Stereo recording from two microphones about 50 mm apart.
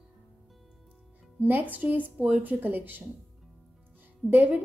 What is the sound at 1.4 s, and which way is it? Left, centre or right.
A woman's voice, right.